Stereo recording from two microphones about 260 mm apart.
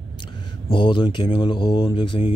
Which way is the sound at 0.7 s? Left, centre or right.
Centre.